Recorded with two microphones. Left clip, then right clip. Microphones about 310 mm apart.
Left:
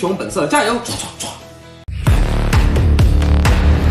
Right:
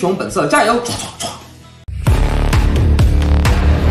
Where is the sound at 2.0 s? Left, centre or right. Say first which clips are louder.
Right 1 dB; centre.